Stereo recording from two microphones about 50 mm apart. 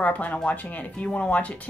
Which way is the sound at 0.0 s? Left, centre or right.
Left.